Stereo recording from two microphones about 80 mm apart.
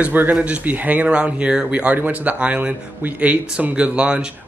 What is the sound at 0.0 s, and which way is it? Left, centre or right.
Speech, right.